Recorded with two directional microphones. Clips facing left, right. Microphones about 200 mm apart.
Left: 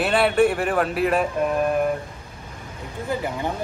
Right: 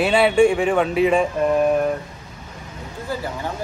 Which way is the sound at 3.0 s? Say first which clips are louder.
Left 1 dB; 15° left (ahead or behind).